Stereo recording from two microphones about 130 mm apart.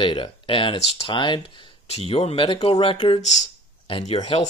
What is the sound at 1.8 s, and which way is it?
Speech, 55° left (ahead or behind).